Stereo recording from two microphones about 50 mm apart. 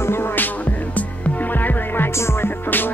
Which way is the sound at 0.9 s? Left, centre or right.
Left.